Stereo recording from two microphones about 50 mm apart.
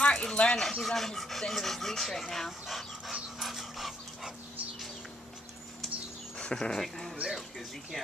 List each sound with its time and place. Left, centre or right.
0.0 s a sound: centre
0.7 s speech: centre
3.3 s dog: centre
6.3 s speech: centre